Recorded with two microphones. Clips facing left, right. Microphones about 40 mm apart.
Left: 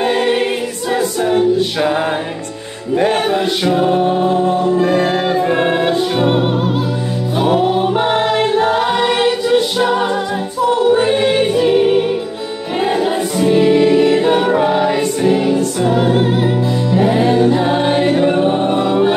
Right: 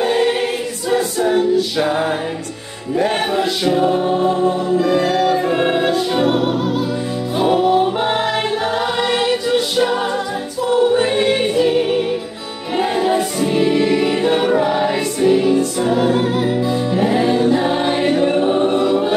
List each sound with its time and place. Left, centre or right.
0.1 s a capella: left
3.4 s music: left
8.6 s music: centre
12.7 s music: centre
13.9 s music: left
17.6 s music: centre
18.2 s choir: centre